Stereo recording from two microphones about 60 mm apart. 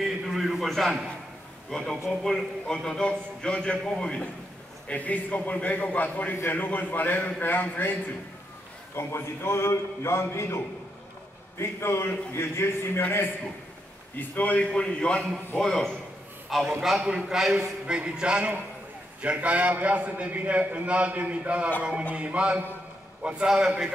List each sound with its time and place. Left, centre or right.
0.0 s a sound: centre
1.7 s a man's voice: centre; by 8.0 s left
8.9 s a man's voice: left
14.1 s a man's voice: left
15.5 s a man's voice: centre
17.0 s a man's voice: centre